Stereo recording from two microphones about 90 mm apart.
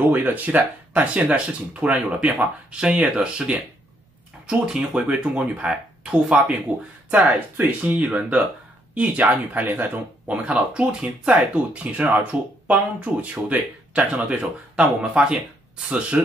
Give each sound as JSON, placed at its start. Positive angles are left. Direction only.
{"t": 0.1, "sound": "speech", "side_deg": -20}
{"t": 8.1, "sound": "speech", "side_deg": -5}